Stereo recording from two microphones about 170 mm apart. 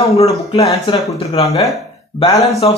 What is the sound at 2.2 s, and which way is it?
Speech, 20° left (ahead or behind).